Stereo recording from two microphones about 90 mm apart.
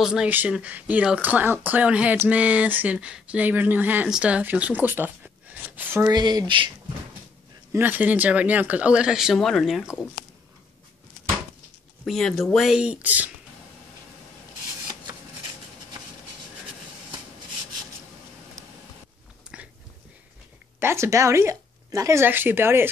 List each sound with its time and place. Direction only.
0.0 s speech: 10° right (ahead or behind)
6.0 s speech: 50° right (ahead or behind)
7.7 s speech: 20° right (ahead or behind); by 9.8 s centre (ahead or behind)
12.0 s speech: 5° left (ahead or behind)
12.8 s speech: 15° right (ahead or behind)
19.5 s biting: 10° right (ahead or behind)
20.8 s speech: 30° right (ahead or behind)
22.2 s speech: 25° right (ahead or behind)